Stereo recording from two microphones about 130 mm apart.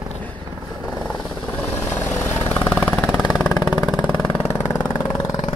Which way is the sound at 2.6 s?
10° left (ahead or behind).